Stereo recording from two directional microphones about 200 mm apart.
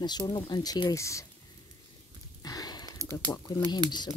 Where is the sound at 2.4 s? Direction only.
20° left (ahead or behind).